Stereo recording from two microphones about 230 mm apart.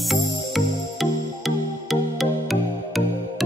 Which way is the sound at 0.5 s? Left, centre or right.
Centre.